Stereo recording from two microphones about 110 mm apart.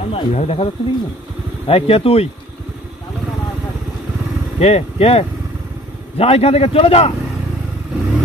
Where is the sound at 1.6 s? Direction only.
60° left (ahead or behind).